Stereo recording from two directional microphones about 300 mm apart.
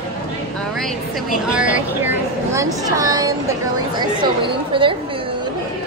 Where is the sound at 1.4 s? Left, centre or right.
Centre.